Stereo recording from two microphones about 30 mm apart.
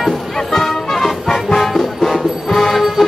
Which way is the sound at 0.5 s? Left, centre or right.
Centre.